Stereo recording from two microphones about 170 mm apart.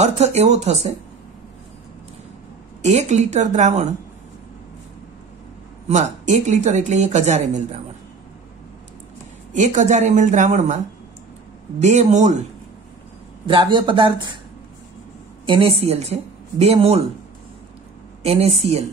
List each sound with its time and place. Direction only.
0.0 s speech: 40° right (ahead or behind)
2.8 s speech: 40° right (ahead or behind)
5.9 s speech: 45° right (ahead or behind)
9.5 s speech: 45° right (ahead or behind)
11.8 s speech: 45° right (ahead or behind)
13.5 s speech: 30° right (ahead or behind)
15.4 s speech: 30° right (ahead or behind)
18.2 s speech: 35° right (ahead or behind)